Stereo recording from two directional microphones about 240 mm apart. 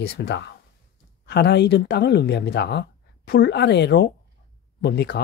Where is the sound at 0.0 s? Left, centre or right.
Left.